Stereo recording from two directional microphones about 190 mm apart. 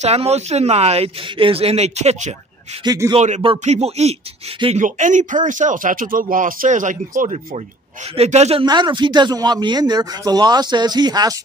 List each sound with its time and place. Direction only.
0.0 s speech: 35° right (ahead or behind)
2.8 s speech: 20° right (ahead or behind)
3.2 s speech: 35° right (ahead or behind)
4.8 s speech: 40° right (ahead or behind)
8.6 s speech: 25° right (ahead or behind)